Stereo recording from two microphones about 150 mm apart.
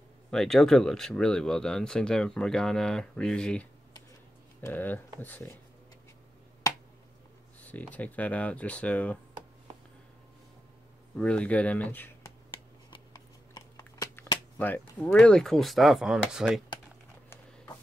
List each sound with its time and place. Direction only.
0.3 s speech: 5° left (ahead or behind)
6.7 s finger snapping: 25° left (ahead or behind)
7.6 s speech: 10° left (ahead or behind)
11.1 s speech: 10° left (ahead or behind)
12.4 s a sound: 30° left (ahead or behind)
14.6 s speech: 10° left (ahead or behind); by 16.6 s 5° right (ahead or behind)